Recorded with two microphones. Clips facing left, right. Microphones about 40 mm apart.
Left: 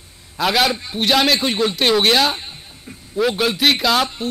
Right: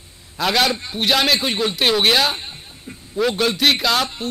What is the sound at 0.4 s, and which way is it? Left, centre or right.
A man's voice, centre.